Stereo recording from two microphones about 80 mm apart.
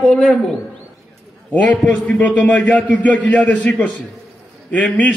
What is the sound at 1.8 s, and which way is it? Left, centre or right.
A man's voice, centre.